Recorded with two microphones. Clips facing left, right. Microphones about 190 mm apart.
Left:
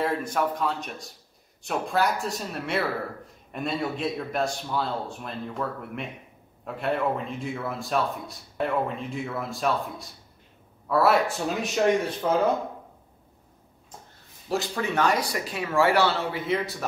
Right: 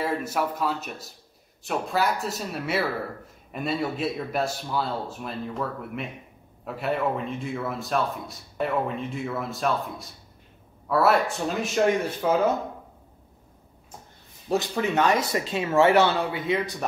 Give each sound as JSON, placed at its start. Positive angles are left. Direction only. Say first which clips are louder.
{"t": 0.0, "sound": "a man's voice", "louder": "left 1 dB", "side_deg": -5}
{"t": 14.5, "sound": "speech", "louder": "right 3 dB", "side_deg": -20}
{"t": 16.3, "sound": "a man's voice", "louder": "right 1 dB", "side_deg": 0}